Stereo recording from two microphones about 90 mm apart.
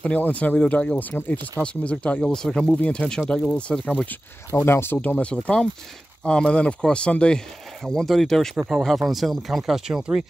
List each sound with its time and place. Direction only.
0.0 s speech: 15° left (ahead or behind)
4.5 s speech: 25° left (ahead or behind); by 10.2 s 5° right (ahead or behind)